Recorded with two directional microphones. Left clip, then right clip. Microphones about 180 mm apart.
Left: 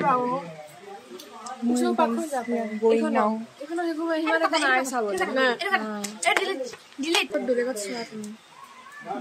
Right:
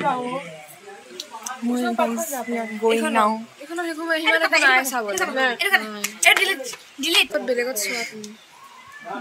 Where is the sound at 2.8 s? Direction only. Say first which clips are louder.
Right 3 dB; 5° right (ahead or behind).